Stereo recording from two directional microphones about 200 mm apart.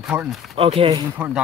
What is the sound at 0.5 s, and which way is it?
Speech, 30° right (ahead or behind).